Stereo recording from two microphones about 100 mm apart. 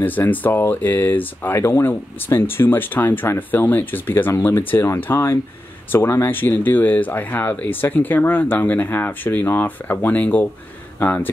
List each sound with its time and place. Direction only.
0.0 s speech: 20° left (ahead or behind)